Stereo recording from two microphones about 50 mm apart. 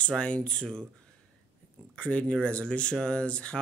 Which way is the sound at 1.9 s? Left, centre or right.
Left.